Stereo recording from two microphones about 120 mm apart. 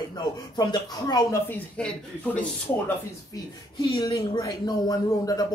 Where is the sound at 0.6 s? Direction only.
35° left (ahead or behind).